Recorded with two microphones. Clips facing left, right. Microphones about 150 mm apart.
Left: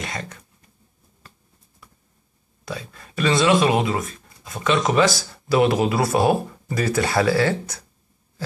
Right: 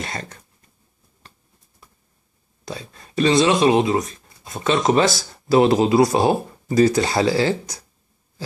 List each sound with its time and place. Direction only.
0.0 s speech: 40° right (ahead or behind)
2.7 s speech: 30° right (ahead or behind)